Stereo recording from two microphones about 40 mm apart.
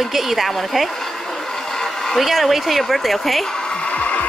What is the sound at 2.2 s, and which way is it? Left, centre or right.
Speech, centre.